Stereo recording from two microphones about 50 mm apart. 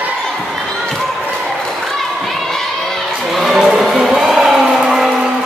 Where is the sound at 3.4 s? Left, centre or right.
Centre.